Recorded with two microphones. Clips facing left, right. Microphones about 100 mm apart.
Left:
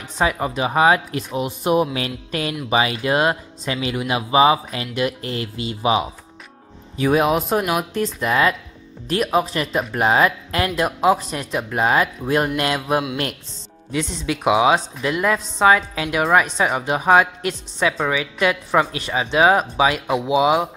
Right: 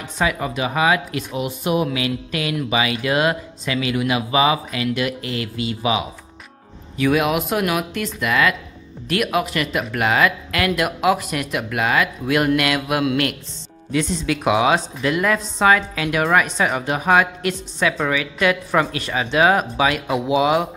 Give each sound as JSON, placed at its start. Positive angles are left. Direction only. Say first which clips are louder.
{"t": 0.2, "sound": "speech", "louder": "left 1 dB", "side_deg": 30}
{"t": 13.9, "sound": "a woman's voice", "louder": "right 3 dB", "side_deg": 20}